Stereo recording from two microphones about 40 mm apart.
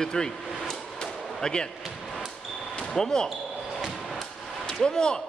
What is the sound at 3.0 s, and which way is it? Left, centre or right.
Speech, centre.